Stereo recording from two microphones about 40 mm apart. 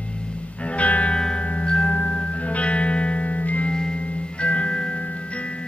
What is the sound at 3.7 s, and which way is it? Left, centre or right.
Music, left.